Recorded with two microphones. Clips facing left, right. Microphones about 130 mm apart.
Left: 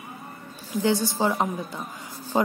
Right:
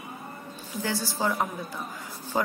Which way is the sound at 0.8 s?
20° left (ahead or behind).